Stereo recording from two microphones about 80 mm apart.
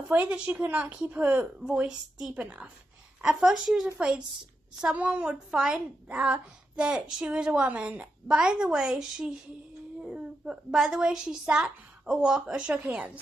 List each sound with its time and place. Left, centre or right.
0.1 s a woman's voice: centre
1.8 s a woman's voice: centre
3.2 s a woman's voice: centre